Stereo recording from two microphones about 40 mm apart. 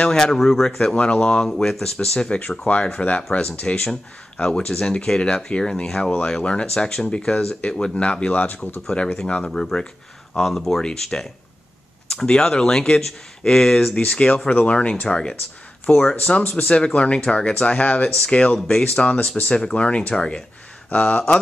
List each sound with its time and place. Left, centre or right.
0.1 s speech: centre
0.9 s speech: left
1.5 s speech: centre
1.8 s speech: left
3.8 s speech: left
5.9 s speech: centre; by 8.8 s left
8.9 s speech: centre
10.8 s speech: left
13.8 s speech: left
14.5 s speech: left; by 16.2 s centre
16.2 s speech: left